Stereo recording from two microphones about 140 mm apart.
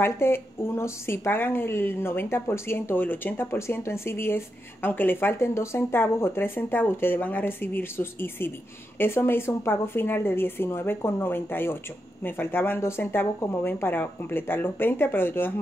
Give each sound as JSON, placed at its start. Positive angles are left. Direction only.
{"t": 0.0, "sound": "a woman's voice", "side_deg": 15}